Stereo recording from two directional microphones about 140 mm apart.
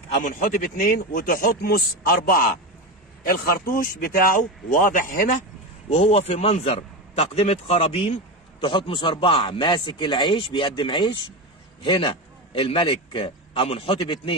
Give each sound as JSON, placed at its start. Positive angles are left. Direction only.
{"t": 0.1, "sound": "speech", "side_deg": 70}
{"t": 5.9, "sound": "a man's voice", "side_deg": 45}